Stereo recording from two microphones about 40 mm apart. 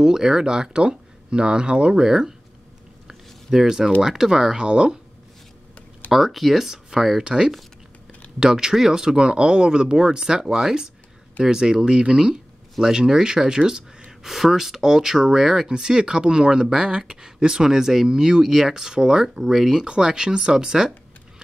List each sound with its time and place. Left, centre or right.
0.0 s speech: centre
3.1 s a sound: centre
3.5 s speech: centre
6.1 s speech: centre
7.2 s speech: right
14.2 s speech: centre
19.7 s speech: centre